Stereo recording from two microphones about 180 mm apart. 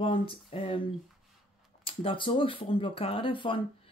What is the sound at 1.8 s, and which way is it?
Speech, 30° left (ahead or behind).